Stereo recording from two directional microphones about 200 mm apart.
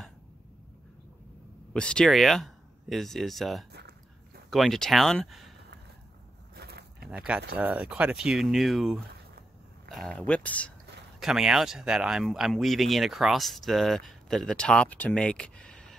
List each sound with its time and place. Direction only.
1.7 s speech: 5° left (ahead or behind)
6.5 s a sound: 50° right (ahead or behind)
7.1 s speech: 5° right (ahead or behind)